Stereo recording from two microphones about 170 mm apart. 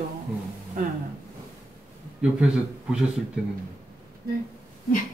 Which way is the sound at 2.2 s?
5° right (ahead or behind).